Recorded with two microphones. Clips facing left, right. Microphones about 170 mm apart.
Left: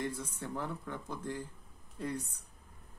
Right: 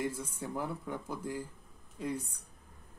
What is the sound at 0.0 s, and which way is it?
A woman's voice, 10° right (ahead or behind).